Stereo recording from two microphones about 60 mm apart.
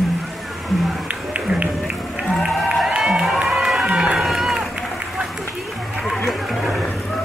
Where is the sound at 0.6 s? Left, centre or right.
Centre.